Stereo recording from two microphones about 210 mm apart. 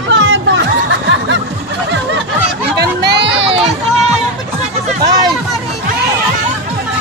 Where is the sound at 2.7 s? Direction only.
55° right (ahead or behind).